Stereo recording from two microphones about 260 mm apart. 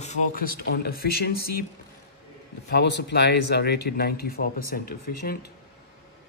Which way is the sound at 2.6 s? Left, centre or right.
Left.